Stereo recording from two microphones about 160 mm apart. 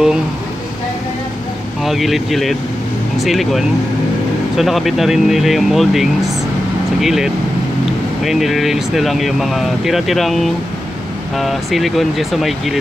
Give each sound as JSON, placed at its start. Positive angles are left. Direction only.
{"t": 1.8, "sound": "speech", "side_deg": 0}